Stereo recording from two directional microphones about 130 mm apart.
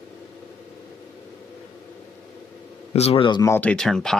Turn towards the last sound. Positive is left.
turn(degrees=5)  # may be behind; listen again after turning